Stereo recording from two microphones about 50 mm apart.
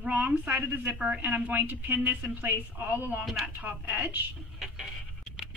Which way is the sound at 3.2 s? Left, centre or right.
Centre.